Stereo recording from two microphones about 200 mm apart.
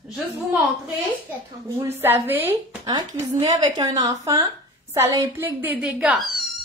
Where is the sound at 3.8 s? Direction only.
20° right (ahead or behind); by 6.4 s centre (ahead or behind).